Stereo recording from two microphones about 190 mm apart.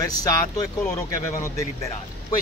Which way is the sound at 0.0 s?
20° left (ahead or behind).